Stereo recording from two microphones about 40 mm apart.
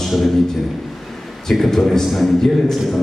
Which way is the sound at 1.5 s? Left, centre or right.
Centre.